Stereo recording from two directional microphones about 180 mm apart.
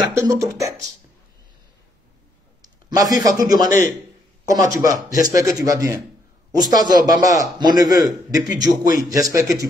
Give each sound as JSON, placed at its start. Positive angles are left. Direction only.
{"t": 0.3, "sound": "a man's voice", "side_deg": -15}
{"t": 3.0, "sound": "a man's voice", "side_deg": -20}